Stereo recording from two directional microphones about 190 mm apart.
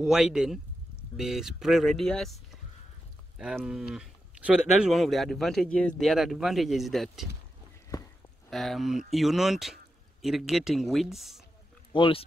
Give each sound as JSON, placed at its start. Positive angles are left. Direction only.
{"t": 0.0, "sound": "speech", "side_deg": -5}
{"t": 3.3, "sound": "speech", "side_deg": -5}
{"t": 8.5, "sound": "speech", "side_deg": 0}
{"t": 11.9, "sound": "speech", "side_deg": 25}